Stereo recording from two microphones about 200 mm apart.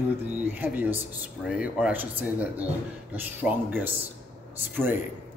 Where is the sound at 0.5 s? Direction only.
10° right (ahead or behind).